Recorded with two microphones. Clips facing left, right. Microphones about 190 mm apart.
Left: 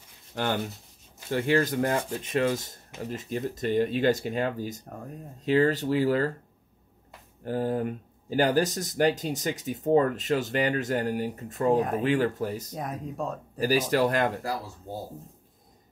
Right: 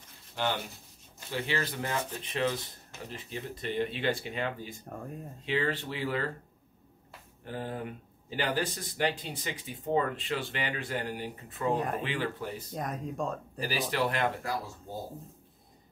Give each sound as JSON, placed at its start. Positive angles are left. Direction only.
{"t": 0.3, "sound": "speech", "side_deg": 50}
{"t": 4.8, "sound": "speech", "side_deg": 0}
{"t": 5.4, "sound": "speech", "side_deg": 40}
{"t": 7.4, "sound": "speech", "side_deg": 40}
{"t": 11.7, "sound": "speech", "side_deg": 0}
{"t": 12.0, "sound": "speech", "side_deg": 45}
{"t": 12.7, "sound": "speech", "side_deg": 5}
{"t": 13.6, "sound": "speech", "side_deg": 45}